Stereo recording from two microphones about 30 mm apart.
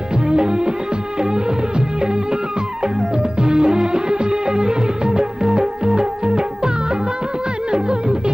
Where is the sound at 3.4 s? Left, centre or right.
Right.